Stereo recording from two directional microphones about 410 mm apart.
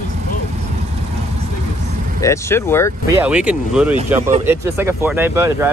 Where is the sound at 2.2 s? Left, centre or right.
Centre.